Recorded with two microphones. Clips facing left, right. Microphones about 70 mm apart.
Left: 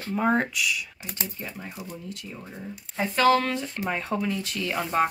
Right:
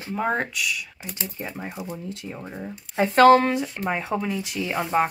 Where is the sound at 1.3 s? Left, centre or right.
Right.